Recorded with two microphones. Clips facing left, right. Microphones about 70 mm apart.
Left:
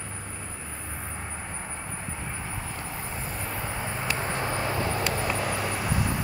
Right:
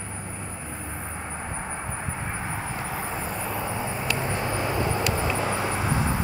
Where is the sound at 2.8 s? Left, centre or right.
Right.